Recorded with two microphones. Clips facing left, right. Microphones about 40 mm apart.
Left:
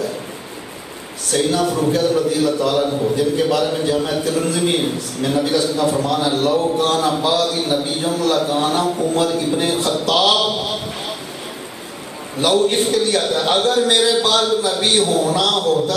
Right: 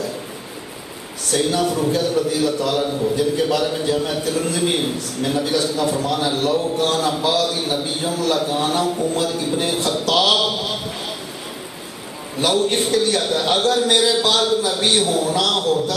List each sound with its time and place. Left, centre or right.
1.3 s a man's voice: centre
12.4 s a man's voice: centre